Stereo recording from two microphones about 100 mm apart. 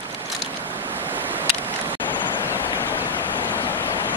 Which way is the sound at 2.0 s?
50° left (ahead or behind).